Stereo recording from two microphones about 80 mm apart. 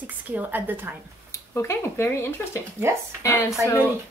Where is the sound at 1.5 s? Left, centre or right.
Left.